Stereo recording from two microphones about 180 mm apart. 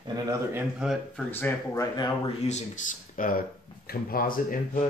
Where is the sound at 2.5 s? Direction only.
40° left (ahead or behind).